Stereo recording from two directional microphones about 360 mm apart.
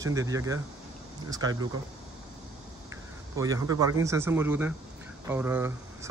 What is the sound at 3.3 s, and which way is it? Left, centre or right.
Speech, centre.